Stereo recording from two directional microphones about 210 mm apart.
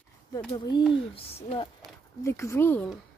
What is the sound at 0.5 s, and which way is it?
Speech, 20° left (ahead or behind).